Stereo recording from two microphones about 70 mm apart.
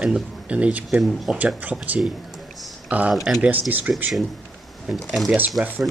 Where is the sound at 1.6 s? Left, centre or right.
Right.